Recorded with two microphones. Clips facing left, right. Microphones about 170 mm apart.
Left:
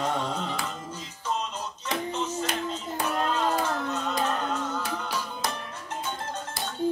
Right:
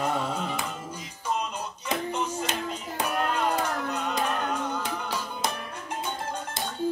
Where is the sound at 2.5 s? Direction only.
15° right (ahead or behind).